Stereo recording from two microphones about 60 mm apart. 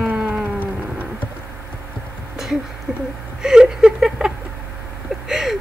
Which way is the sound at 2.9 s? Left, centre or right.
Right.